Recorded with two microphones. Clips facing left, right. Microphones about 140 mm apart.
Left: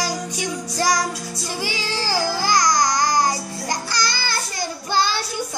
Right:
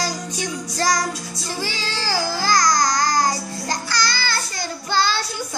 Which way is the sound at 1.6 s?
15° left (ahead or behind).